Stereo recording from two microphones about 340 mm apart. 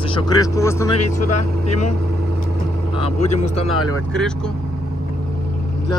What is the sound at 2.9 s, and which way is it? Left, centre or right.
Speech, centre.